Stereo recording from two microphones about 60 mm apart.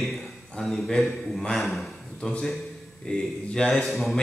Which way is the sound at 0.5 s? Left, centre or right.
Centre.